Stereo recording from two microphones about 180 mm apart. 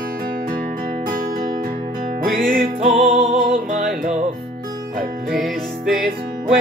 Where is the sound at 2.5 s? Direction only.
50° right (ahead or behind).